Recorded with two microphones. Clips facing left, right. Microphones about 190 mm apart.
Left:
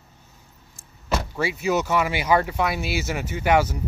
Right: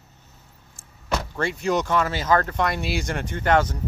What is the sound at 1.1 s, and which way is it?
Speech, 5° left (ahead or behind).